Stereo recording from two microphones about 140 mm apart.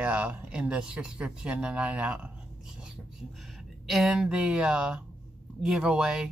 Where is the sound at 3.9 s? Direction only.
Centre (ahead or behind).